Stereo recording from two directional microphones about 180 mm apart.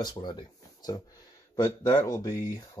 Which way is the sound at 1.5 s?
25° left (ahead or behind).